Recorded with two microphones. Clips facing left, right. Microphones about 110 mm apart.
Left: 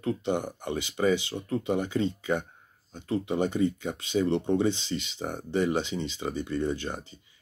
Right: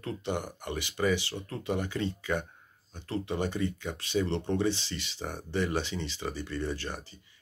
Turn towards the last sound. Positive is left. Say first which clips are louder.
# left 4 dB
turn(degrees=20)  # may be behind; listen again after turning